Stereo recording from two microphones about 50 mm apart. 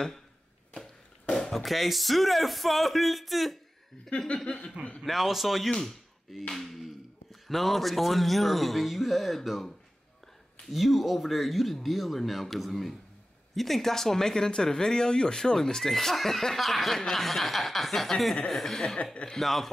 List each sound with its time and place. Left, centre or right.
0.7 s speech: centre
4.1 s chuckle: left
4.5 s speech: centre
5.0 s speech: centre
10.7 s speech: centre